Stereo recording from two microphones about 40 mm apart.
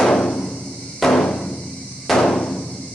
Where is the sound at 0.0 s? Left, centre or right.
Centre.